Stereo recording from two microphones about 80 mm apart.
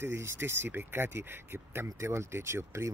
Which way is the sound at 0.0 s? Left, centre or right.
Right.